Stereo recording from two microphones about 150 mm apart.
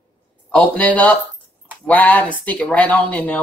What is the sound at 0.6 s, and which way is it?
Speech, 10° left (ahead or behind).